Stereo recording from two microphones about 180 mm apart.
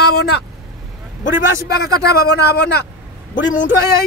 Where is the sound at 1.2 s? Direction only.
60° left (ahead or behind).